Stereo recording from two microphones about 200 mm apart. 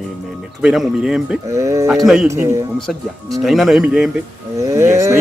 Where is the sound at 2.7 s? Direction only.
Centre (ahead or behind).